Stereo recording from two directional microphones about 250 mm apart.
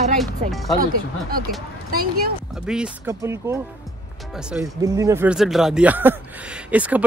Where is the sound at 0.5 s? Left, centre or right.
Centre.